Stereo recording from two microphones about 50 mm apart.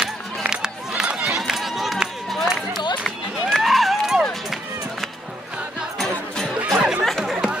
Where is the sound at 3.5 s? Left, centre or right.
Centre.